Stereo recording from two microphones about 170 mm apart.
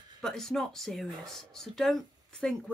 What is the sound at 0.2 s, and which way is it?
Speech, 5° left (ahead or behind).